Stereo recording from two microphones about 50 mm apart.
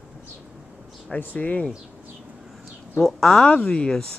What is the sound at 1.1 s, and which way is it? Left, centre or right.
Speech, left.